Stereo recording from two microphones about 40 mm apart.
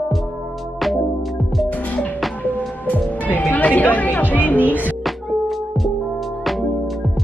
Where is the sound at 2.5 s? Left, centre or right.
Left.